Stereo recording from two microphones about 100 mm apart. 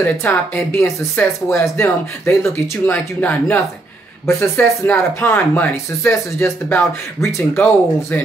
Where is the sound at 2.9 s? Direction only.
15° left (ahead or behind).